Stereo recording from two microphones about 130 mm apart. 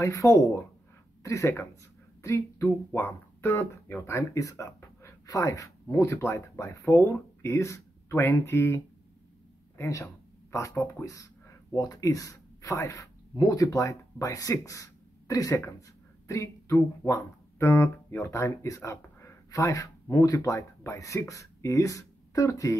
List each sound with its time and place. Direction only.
0.0 s speech: 25° left (ahead or behind)